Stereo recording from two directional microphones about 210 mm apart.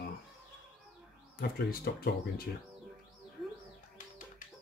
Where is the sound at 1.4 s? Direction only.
45° left (ahead or behind).